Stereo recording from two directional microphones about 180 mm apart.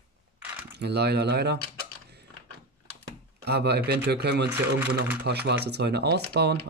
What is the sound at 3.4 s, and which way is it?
Speech, 65° right (ahead or behind).